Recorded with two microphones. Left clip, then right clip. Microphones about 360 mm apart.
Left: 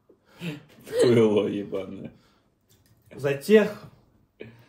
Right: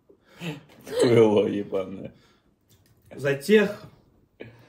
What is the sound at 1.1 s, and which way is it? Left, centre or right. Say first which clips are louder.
Speech: right 2 dB; centre.